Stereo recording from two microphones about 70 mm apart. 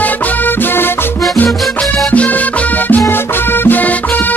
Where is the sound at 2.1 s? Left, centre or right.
Left.